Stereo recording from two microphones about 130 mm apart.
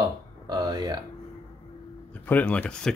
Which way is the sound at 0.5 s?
30° right (ahead or behind).